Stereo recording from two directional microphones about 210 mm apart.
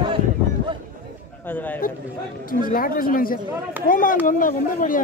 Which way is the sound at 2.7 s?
45° left (ahead or behind).